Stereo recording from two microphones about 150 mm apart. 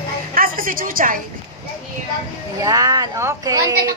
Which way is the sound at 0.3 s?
70° right (ahead or behind).